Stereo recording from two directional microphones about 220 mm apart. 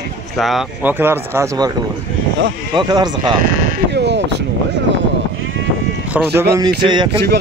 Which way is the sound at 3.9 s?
50° right (ahead or behind).